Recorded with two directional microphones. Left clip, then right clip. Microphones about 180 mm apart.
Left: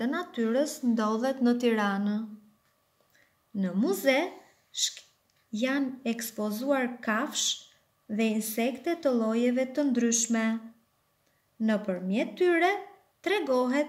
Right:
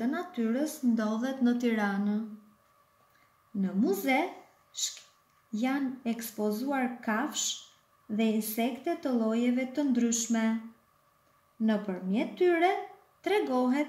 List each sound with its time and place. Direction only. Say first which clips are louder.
0.0 s speech: left 2 dB; 55° left (ahead or behind)
3.6 s speech: left 3 dB; 55° left (ahead or behind)
5.5 s a woman's voice: left 2 dB; 50° left (ahead or behind)
11.6 s a woman's voice: left 2 dB; 55° left (ahead or behind)